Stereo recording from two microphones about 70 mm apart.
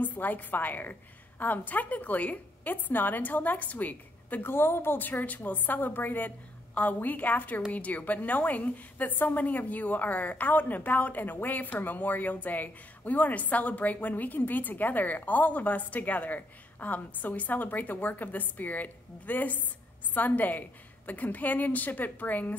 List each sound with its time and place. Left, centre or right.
0.0 s a woman's voice: left